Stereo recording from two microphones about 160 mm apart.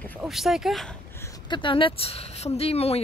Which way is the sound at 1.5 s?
30° left (ahead or behind).